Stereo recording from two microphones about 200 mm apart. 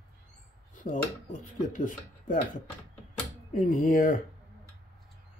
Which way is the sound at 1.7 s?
40° left (ahead or behind).